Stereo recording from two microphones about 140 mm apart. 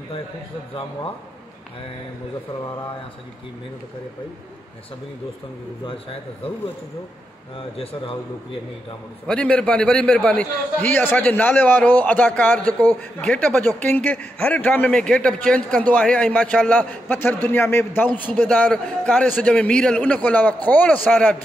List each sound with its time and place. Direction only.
7.7 s a man's voice: 40° left (ahead or behind)
9.3 s a man's voice: 5° left (ahead or behind)